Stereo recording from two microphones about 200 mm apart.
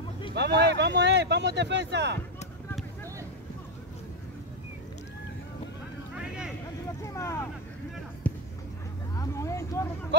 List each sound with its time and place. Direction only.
0.3 s speech: 55° right (ahead or behind)
6.1 s vehicle: 5° right (ahead or behind)
7.2 s speech: 15° left (ahead or behind)
8.2 s music: 5° left (ahead or behind)
9.1 s speech: 15° left (ahead or behind)